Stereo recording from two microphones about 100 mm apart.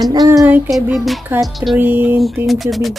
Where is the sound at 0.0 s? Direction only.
40° right (ahead or behind).